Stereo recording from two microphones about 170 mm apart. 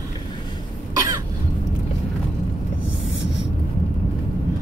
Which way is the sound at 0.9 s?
20° right (ahead or behind).